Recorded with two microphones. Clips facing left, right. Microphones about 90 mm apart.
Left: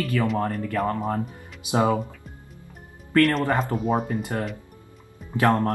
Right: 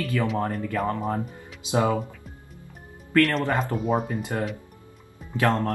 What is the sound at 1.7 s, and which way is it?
Speech, 20° left (ahead or behind).